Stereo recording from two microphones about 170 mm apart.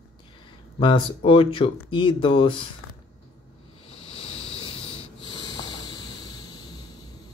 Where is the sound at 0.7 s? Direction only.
30° left (ahead or behind).